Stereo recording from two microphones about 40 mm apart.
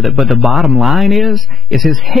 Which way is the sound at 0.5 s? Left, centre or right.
Centre.